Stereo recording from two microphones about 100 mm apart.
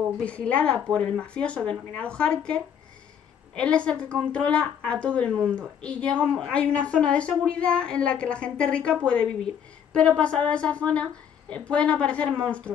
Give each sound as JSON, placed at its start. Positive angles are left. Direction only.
{"t": 0.2, "sound": "a woman's voice", "side_deg": 10}
{"t": 5.3, "sound": "speech", "side_deg": -20}
{"t": 5.6, "sound": "a woman's voice", "side_deg": 10}